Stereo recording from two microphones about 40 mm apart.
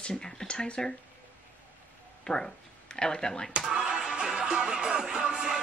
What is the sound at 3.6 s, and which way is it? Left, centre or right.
Music, centre.